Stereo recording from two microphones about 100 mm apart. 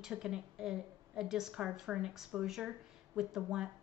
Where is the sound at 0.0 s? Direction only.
5° right (ahead or behind).